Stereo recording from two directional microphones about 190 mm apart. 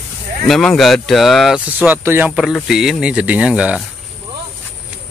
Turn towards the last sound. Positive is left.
turn(degrees=-5)  # may be behind; listen again after turning